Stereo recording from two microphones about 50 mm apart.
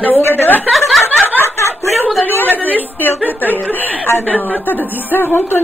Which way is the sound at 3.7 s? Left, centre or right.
Left.